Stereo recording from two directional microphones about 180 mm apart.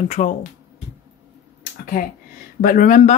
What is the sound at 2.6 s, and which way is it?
Speech, 50° left (ahead or behind).